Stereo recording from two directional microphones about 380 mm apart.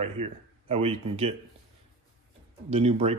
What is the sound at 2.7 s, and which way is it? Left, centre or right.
Speech, centre.